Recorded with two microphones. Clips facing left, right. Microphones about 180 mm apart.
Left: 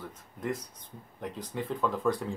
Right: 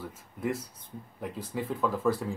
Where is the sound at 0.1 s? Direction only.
5° right (ahead or behind).